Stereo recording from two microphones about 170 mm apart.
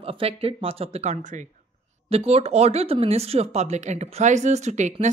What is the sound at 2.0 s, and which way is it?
A woman's voice, 35° right (ahead or behind).